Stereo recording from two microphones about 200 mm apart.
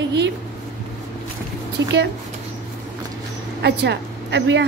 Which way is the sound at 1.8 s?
65° right (ahead or behind).